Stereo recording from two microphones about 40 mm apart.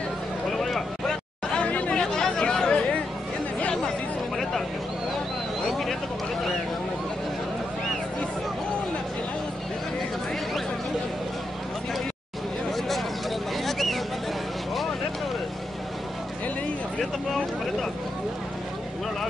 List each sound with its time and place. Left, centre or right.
0.5 s a sound: centre
1.7 s chatter: left
2.0 s chatter: centre
4.4 s vehicle: centre
5.7 s vehicle: centre
12.7 s a sound: centre